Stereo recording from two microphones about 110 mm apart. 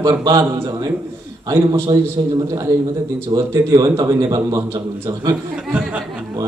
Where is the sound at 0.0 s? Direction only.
40° right (ahead or behind).